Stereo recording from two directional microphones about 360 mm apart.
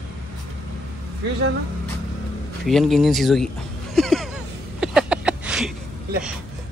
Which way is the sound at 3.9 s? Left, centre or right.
Centre.